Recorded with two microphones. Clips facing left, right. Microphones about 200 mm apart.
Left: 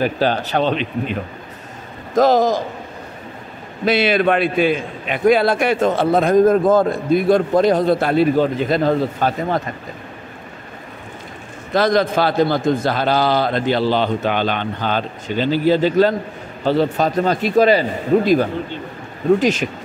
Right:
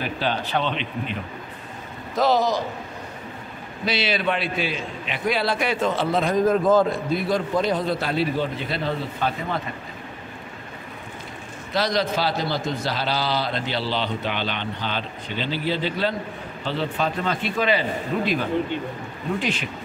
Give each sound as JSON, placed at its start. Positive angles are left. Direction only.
{"t": 0.0, "sound": "a man's voice", "side_deg": 40}
{"t": 2.1, "sound": "a man's voice", "side_deg": 45}
{"t": 3.8, "sound": "a man's voice", "side_deg": 55}
{"t": 11.7, "sound": "a man's voice", "side_deg": 50}